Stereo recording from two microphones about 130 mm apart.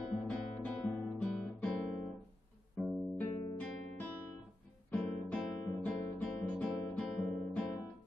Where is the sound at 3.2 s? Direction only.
20° left (ahead or behind).